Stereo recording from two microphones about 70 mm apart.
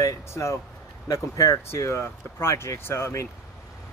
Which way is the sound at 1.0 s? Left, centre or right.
Left.